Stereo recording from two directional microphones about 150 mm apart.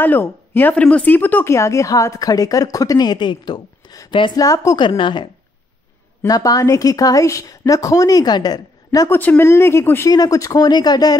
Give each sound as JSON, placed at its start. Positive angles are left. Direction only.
{"t": 0.0, "sound": "speech", "side_deg": 15}
{"t": 9.2, "sound": "speech", "side_deg": 15}